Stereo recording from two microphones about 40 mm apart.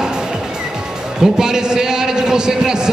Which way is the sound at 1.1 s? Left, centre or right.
Centre.